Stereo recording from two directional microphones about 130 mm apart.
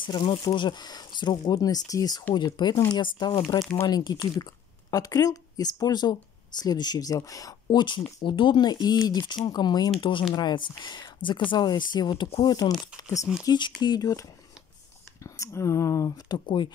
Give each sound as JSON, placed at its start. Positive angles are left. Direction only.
{"t": 0.0, "sound": "speech", "side_deg": 35}
{"t": 12.5, "sound": "speech", "side_deg": 30}
{"t": 15.2, "sound": "speech", "side_deg": 25}